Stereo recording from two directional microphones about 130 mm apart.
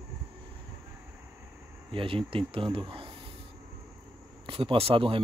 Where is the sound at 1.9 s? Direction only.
40° right (ahead or behind).